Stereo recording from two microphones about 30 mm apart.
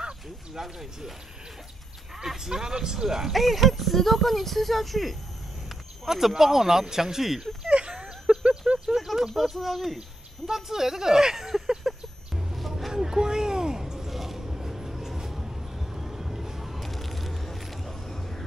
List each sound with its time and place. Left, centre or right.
0.6 s speech: centre
2.1 s speech: centre
3.3 s speech: centre
6.0 s speech: centre
7.7 s a sound: right
8.8 s speech: centre
9.9 s speech: centre
12.5 s a sound: centre
12.9 s a sound: right
14.1 s vehicle: centre
16.8 s crushing: centre
18.0 s a sound: centre